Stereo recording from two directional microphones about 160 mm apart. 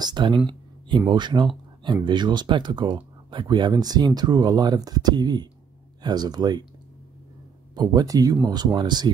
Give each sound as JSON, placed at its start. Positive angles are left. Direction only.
{"t": 0.0, "sound": "speech", "side_deg": -30}
{"t": 7.7, "sound": "speech", "side_deg": -25}